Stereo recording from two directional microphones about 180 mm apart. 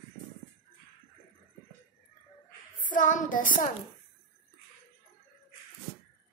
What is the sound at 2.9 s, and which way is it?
Child singing, 45° left (ahead or behind).